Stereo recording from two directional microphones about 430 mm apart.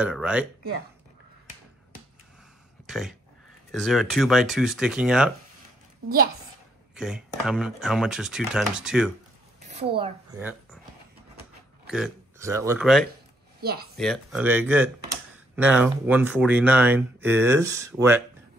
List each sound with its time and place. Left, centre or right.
0.0 s speech: centre
2.9 s speech: centre
6.0 s a woman's voice: centre
7.0 s speech: centre
9.7 s speech: centre
11.9 s speech: centre
13.6 s a woman's voice: right
13.9 s speech: centre